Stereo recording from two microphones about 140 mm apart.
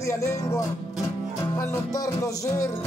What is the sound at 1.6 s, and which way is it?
Music, 25° left (ahead or behind).